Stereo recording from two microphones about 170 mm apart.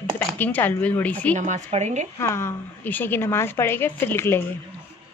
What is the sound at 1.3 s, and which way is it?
Speech, 45° right (ahead or behind).